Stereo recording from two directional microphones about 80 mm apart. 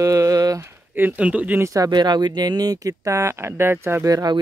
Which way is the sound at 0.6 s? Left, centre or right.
Right.